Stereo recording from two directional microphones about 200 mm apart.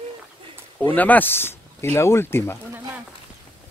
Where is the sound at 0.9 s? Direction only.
10° left (ahead or behind).